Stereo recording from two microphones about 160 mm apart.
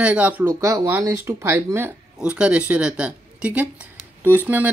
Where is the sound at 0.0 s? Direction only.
10° right (ahead or behind).